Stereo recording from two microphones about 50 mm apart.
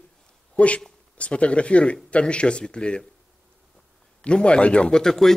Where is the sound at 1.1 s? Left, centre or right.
Left.